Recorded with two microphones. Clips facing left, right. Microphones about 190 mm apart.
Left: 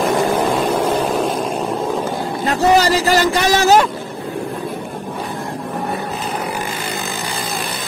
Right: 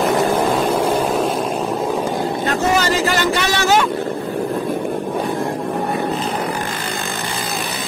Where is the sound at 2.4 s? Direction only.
35° left (ahead or behind).